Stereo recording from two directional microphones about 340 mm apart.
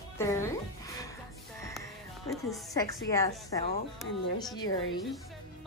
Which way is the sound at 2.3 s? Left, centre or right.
Centre.